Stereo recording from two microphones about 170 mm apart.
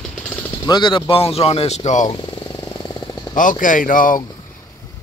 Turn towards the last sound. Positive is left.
turn(degrees=55)  # may be behind; listen again after turning